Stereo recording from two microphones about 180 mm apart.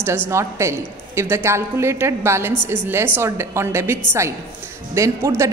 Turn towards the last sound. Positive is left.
turn(degrees=-15)  # may be behind; listen again after turning